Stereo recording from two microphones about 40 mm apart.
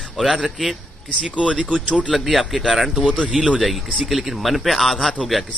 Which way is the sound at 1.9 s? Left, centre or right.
Right.